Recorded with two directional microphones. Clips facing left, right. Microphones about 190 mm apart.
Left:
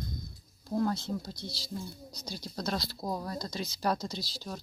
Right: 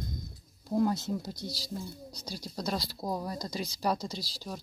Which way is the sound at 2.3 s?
10° right (ahead or behind).